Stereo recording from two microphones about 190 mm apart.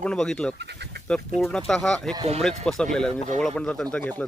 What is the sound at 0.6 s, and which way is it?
Speech, 60° right (ahead or behind).